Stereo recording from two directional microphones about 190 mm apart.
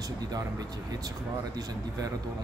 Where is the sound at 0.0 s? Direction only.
20° right (ahead or behind).